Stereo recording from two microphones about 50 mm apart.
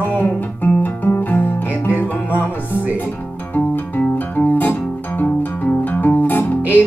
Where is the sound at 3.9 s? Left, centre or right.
Left.